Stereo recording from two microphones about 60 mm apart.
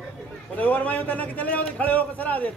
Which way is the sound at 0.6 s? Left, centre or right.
Left.